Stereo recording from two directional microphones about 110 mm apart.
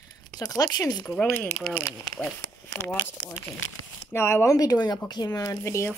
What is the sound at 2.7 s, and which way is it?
Speech, 20° left (ahead or behind).